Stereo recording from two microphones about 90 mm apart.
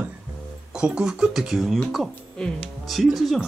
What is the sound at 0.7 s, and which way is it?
Speech, 10° right (ahead or behind).